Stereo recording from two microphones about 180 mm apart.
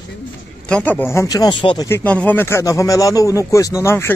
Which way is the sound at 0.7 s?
10° left (ahead or behind).